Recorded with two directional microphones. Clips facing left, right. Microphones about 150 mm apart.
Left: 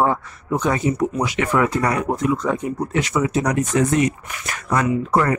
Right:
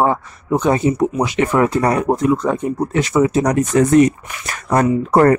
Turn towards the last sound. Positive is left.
turn(degrees=-50)  # may be behind; listen again after turning